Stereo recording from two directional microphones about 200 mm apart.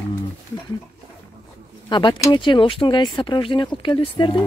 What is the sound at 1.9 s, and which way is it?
Speech, 20° left (ahead or behind).